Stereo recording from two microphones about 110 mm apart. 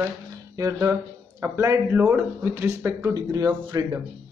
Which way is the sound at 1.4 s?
25° right (ahead or behind).